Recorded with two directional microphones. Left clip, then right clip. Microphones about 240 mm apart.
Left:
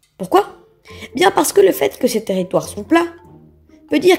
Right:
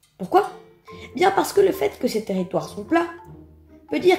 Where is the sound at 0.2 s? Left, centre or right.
Left.